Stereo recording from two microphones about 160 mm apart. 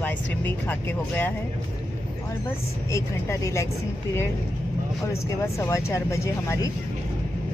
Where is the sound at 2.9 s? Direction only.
20° left (ahead or behind).